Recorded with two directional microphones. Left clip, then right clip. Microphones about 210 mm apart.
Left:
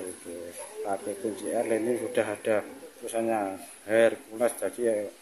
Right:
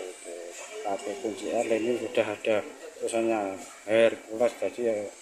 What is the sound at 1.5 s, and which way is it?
Speech, 5° right (ahead or behind).